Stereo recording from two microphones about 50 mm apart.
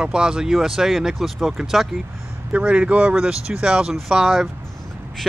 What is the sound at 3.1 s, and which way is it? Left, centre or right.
Speech, centre.